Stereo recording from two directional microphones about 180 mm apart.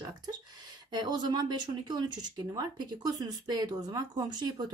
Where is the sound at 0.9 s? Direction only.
25° right (ahead or behind).